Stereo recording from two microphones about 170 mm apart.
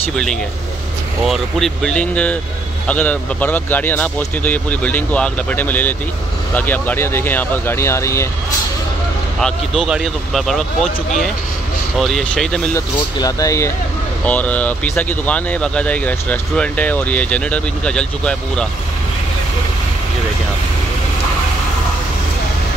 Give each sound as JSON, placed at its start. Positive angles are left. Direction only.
{"t": 0.1, "sound": "speech", "side_deg": 5}
{"t": 9.4, "sound": "speech", "side_deg": 0}
{"t": 12.7, "sound": "speech", "side_deg": 20}
{"t": 14.2, "sound": "speech", "side_deg": 10}